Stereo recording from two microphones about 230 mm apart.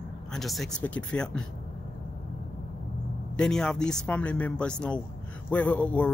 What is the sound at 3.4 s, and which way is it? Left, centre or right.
Speech, centre.